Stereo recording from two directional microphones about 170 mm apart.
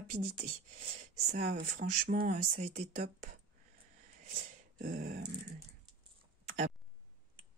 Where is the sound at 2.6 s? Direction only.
40° right (ahead or behind).